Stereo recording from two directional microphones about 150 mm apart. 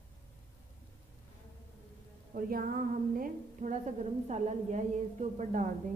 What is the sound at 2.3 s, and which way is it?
Music, 70° right (ahead or behind).